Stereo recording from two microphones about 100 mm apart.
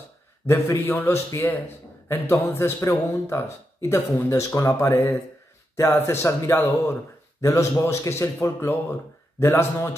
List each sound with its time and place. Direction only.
0.5 s speech: 20° left (ahead or behind)